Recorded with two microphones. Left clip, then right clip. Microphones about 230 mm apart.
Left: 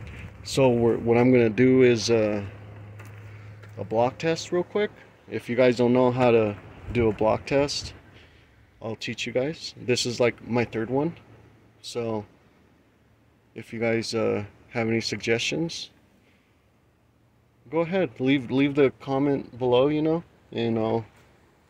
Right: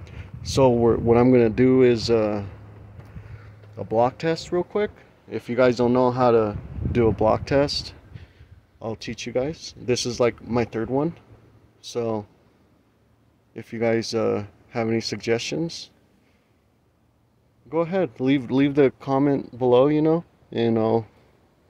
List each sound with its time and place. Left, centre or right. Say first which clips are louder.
0.0 s speech: right 1 dB; centre
3.7 s speech: right 3 dB; centre
6.9 s speech: right 3 dB; centre
13.5 s speech: right 3 dB; centre
17.6 s speech: right 2 dB; centre; by 21.0 s right